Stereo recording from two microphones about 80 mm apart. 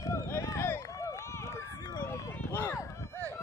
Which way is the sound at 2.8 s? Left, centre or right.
Left.